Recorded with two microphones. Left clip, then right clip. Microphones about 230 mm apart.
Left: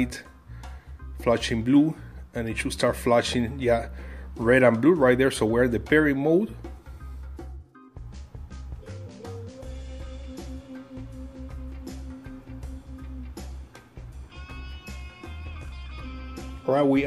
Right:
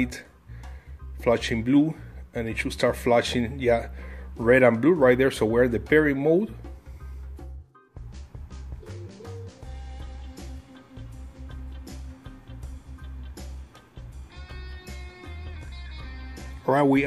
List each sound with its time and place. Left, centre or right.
0.0 s music: centre
1.1 s speech: centre
8.1 s music: centre
11.3 s music: centre
16.6 s speech: centre